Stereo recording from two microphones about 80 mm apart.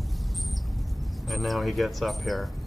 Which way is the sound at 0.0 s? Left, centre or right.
Centre.